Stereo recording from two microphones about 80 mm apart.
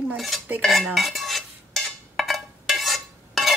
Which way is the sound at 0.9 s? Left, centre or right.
Centre.